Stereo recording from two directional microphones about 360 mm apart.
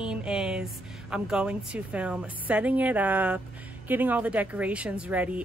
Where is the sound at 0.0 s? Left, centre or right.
Centre.